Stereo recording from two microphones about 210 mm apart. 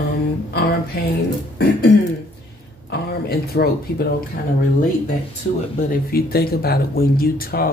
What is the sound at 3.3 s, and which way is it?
Speech, 50° left (ahead or behind).